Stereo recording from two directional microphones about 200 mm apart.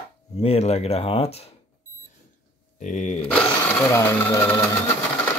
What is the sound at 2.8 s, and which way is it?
Speech, 40° left (ahead or behind).